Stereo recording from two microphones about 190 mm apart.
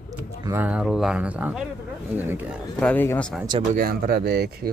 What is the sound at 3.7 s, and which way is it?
Speech, 50° right (ahead or behind).